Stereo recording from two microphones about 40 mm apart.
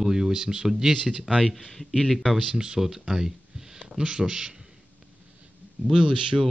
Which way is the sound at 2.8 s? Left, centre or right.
Centre.